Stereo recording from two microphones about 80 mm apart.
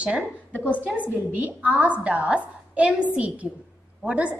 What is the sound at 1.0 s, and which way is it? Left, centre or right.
A woman's voice, centre.